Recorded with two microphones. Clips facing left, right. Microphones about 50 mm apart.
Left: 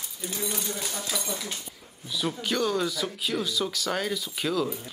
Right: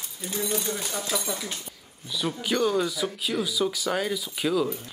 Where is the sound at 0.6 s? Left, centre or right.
Centre.